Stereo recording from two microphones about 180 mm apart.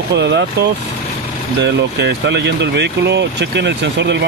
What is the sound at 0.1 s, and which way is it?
Speech, 75° right (ahead or behind).